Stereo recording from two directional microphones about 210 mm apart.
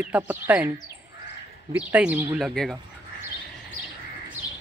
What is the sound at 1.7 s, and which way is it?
Speech, 5° right (ahead or behind).